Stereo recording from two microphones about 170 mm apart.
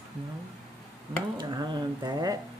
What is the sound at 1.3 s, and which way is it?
Speech, 25° right (ahead or behind).